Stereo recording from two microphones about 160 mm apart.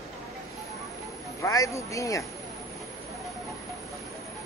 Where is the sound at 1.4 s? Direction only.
20° left (ahead or behind).